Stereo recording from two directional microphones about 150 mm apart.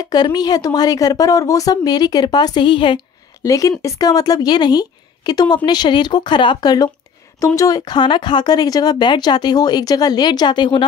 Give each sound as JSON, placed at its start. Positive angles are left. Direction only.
{"t": 0.0, "sound": "speech", "side_deg": 25}
{"t": 3.4, "sound": "speech", "side_deg": 20}